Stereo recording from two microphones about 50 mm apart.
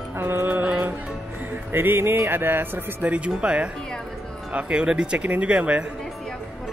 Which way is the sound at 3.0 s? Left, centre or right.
Right.